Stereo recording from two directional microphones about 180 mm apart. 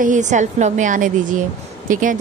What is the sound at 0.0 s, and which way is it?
Speech, 45° right (ahead or behind).